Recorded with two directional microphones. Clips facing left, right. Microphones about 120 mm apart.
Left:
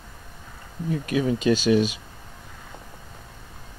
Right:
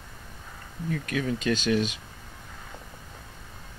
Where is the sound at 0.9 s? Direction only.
20° left (ahead or behind).